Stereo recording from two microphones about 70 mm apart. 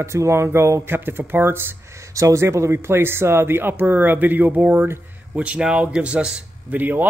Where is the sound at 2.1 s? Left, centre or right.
Right; by 6.8 s centre.